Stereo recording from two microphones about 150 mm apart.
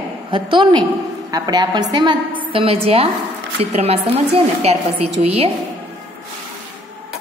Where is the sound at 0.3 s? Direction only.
35° right (ahead or behind).